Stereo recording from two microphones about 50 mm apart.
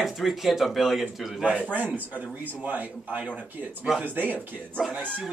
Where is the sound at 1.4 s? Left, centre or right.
Right.